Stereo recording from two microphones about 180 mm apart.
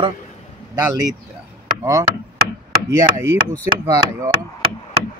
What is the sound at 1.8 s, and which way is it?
Chop, 20° right (ahead or behind).